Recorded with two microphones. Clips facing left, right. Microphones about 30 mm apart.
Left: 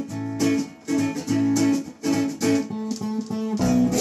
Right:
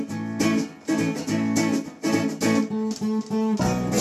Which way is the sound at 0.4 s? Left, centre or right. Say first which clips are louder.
Left 1 dB; centre.